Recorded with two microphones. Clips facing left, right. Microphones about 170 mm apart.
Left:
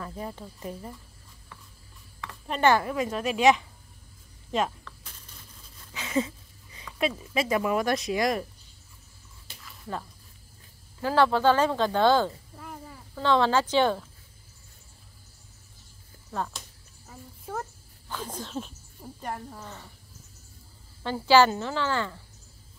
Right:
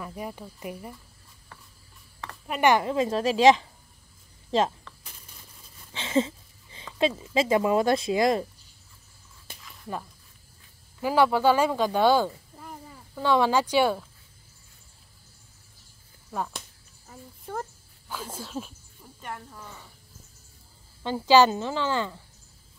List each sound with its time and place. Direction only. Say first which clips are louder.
0.0 s speech: right 1 dB; 10° right (ahead or behind)
2.4 s a woman's voice: right 1 dB; 10° right (ahead or behind); by 4.9 s 30° right (ahead or behind)
5.9 s speech: right 3 dB; 25° right (ahead or behind)
11.0 s speech: right 1 dB; 15° right (ahead or behind)
16.3 s speech: even; 10° right (ahead or behind)
17.5 s speech: right 1 dB; 5° left (ahead or behind)
18.0 s speech: left 1 dB; 10° right (ahead or behind)
19.0 s cricket: left 8 dB; 35° left (ahead or behind)
21.0 s speech: right 1 dB; 15° right (ahead or behind)